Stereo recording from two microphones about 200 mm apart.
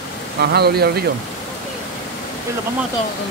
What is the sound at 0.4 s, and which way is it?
Speech, 55° right (ahead or behind).